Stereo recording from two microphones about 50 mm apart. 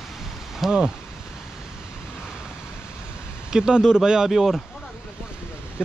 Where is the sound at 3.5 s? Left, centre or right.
Centre.